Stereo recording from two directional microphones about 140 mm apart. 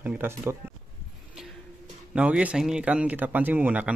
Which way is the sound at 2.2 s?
10° right (ahead or behind).